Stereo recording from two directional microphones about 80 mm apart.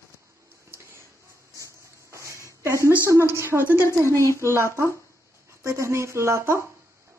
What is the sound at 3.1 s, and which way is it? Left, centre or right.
Speech, right.